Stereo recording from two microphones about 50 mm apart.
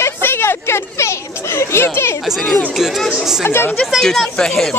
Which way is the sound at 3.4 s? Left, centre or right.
Left.